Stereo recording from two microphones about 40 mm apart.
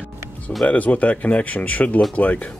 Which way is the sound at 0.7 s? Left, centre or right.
Left.